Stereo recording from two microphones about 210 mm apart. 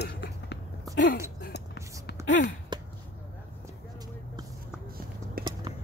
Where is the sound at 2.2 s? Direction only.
65° left (ahead or behind).